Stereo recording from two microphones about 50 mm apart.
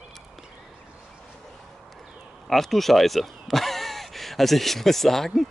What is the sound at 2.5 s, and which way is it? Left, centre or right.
Speech, centre.